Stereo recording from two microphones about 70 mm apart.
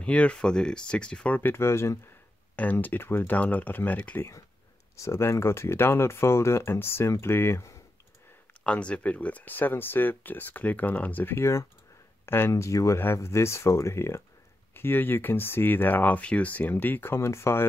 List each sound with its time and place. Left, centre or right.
0.0 s speech: centre
1.5 s speech: left
2.5 s speech: left
4.9 s speech: left
8.6 s speech: centre; by 17.6 s left